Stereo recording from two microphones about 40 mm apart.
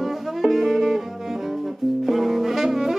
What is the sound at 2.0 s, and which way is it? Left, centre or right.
Saxophone, centre.